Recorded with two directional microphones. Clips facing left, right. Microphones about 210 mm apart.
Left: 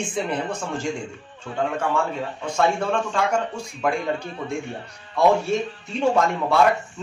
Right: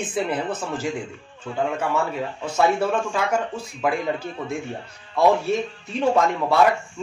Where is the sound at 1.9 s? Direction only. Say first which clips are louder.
Even; 5° right (ahead or behind).